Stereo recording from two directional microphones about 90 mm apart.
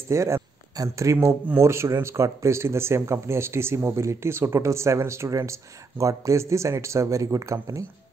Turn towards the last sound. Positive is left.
turn(degrees=-35)  # may be behind; listen again after turning